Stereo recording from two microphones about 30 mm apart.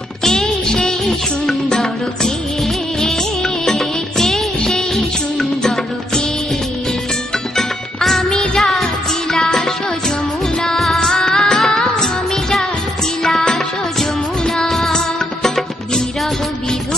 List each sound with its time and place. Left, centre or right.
0.2 s music: centre
3.4 s music: centre
7.5 s music: centre
13.9 s music: centre